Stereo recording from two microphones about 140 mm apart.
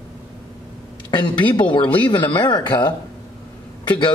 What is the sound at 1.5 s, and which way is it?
A man's voice, 35° left (ahead or behind).